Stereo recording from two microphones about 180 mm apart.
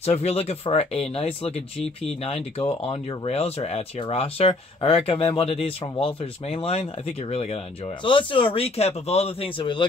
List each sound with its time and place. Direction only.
0.0 s speech: 35° left (ahead or behind)